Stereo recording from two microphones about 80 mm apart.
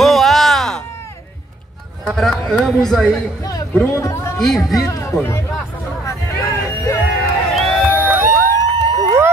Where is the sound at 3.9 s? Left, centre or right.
Left.